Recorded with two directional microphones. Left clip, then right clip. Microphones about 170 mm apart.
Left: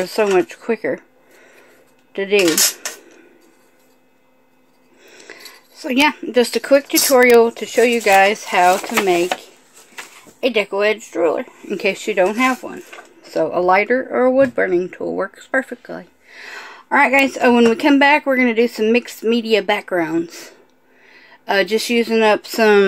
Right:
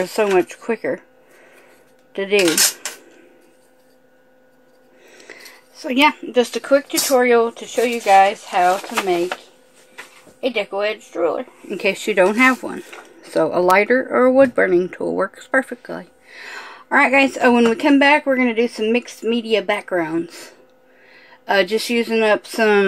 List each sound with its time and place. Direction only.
0.0 s speech: centre (ahead or behind)
2.1 s speech: 5° left (ahead or behind)
2.4 s speech: 10° right (ahead or behind)
5.0 s a sound: 5° left (ahead or behind)
6.3 s speech: 35° left (ahead or behind)
10.4 s speech: 50° left (ahead or behind)
12.0 s speech: 10° right (ahead or behind)
12.4 s speech: 25° right (ahead or behind); by 22.8 s 10° left (ahead or behind)